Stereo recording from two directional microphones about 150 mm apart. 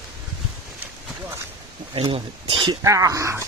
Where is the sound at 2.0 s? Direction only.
40° right (ahead or behind).